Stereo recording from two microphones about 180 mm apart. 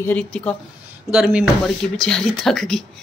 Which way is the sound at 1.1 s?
5° right (ahead or behind).